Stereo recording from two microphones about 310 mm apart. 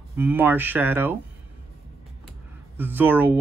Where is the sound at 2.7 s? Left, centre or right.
Centre.